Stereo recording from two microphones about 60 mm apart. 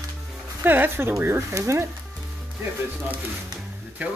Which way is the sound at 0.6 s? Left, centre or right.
Right.